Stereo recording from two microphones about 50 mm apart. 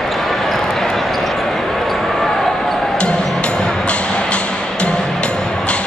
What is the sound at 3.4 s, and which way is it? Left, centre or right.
Music, left.